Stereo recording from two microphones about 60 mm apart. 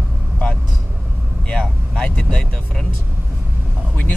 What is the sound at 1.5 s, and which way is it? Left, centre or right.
Speech, centre.